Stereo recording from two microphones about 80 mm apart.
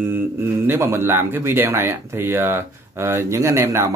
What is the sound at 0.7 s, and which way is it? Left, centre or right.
Speech, right.